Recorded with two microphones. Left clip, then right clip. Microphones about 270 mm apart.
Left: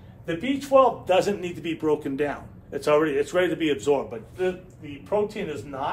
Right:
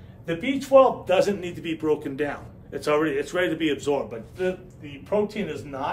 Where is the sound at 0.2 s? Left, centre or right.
Centre.